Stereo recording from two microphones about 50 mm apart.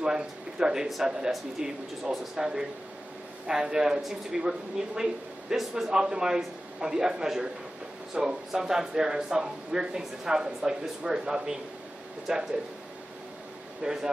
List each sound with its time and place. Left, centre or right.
0.0 s speech: centre
13.8 s speech: right